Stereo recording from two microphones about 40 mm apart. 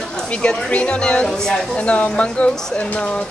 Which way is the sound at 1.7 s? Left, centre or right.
Left.